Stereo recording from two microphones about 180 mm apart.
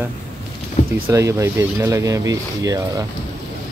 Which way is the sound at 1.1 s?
15° right (ahead or behind).